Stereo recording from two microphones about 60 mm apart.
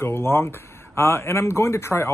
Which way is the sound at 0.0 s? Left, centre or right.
Left.